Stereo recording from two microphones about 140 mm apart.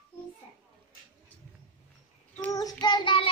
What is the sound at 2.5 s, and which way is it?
Child singing, 30° left (ahead or behind).